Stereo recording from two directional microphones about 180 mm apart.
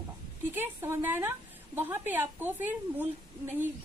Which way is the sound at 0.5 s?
10° right (ahead or behind).